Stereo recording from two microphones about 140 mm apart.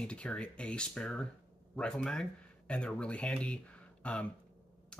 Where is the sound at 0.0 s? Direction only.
5° left (ahead or behind).